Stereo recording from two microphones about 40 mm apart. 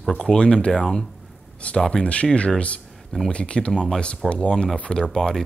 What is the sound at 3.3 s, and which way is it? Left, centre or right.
Speech, left.